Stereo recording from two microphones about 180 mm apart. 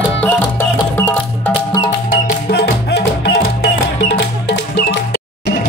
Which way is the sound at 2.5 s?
65° left (ahead or behind).